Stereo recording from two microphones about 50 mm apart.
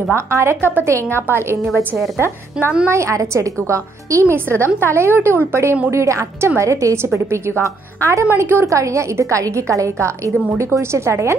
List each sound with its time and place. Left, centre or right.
0.1 s a woman's voice: right
0.6 s a woman's voice: right
0.8 s a woman's voice: right
1.2 s a woman's voice: right
2.9 s speech: right
4.3 s a woman's voice: right
5.9 s speech: right
7.2 s a woman's voice: right
8.4 s a woman's voice: right
10.6 s a woman's voice: right